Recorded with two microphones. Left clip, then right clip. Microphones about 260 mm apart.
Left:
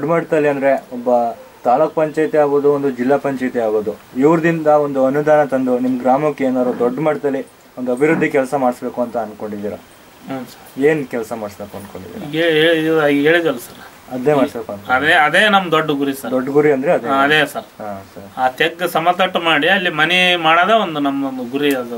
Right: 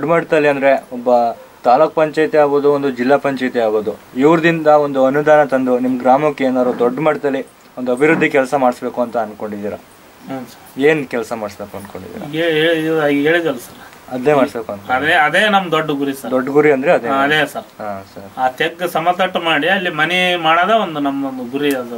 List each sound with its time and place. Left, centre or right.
0.0 s a man's voice: centre
10.3 s a man's voice: centre
12.3 s speech: centre
14.9 s speech: centre
16.3 s a man's voice: centre